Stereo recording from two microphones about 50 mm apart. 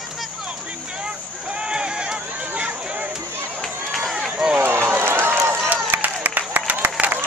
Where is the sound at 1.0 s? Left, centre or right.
Centre.